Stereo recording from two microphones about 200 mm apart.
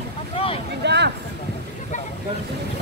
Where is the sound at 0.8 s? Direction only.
55° right (ahead or behind).